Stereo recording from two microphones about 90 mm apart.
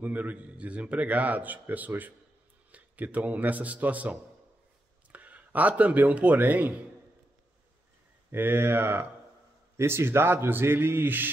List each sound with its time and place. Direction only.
0.0 s a man's voice: 20° right (ahead or behind)
8.3 s a man's voice: 25° right (ahead or behind)